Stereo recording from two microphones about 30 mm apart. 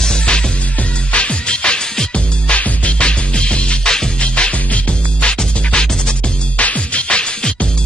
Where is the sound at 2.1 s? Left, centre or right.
Left.